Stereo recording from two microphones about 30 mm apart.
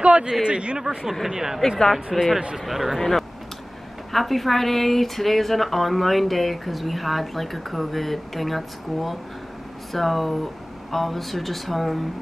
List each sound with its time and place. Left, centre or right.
0.0 s a sound: right
0.3 s speech: right
1.2 s a woman's voice: centre
3.0 s a woman's voice: centre